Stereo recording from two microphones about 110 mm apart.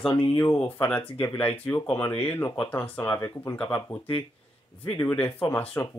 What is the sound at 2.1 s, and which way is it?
Speech, 15° left (ahead or behind).